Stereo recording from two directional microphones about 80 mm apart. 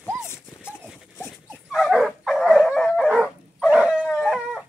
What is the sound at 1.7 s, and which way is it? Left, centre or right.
Dog, centre.